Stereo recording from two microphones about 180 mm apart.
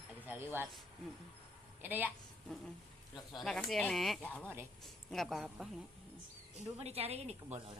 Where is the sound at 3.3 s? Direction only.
Centre (ahead or behind).